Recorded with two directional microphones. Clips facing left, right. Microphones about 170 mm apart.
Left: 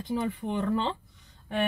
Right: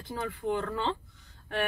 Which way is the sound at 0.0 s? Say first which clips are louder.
Left 4 dB; 20° left (ahead or behind).